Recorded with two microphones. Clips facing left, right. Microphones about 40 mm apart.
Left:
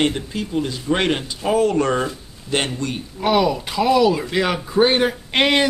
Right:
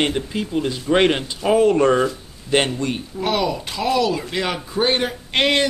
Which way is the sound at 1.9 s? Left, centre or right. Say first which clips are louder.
Right 3 dB; centre.